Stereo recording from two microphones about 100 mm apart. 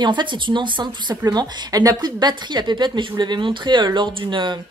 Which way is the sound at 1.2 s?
40° right (ahead or behind).